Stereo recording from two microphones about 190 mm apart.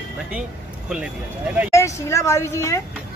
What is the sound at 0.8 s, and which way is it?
Speech, 5° right (ahead or behind).